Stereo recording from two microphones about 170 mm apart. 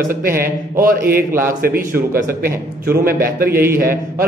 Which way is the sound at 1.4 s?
55° right (ahead or behind).